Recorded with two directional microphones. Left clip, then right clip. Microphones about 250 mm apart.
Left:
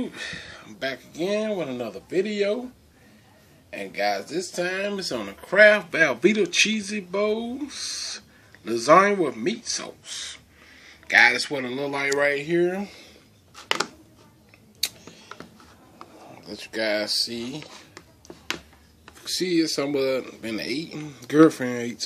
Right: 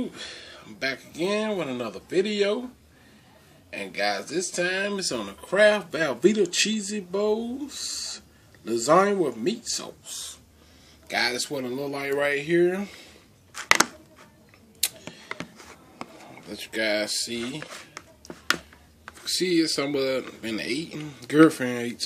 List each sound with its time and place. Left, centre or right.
0.0 s speech: centre
3.7 s speech: centre
14.8 s camera: centre
16.3 s speech: centre
19.2 s speech: centre